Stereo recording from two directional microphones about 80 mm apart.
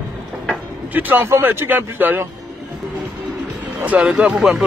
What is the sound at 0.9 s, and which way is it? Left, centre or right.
A man's voice, right.